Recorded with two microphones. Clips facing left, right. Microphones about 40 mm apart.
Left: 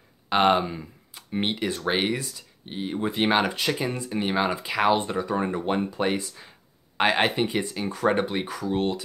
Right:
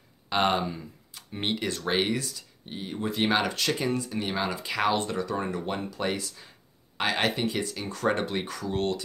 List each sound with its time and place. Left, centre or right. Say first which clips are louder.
0.3 s speech: left 5 dB; centre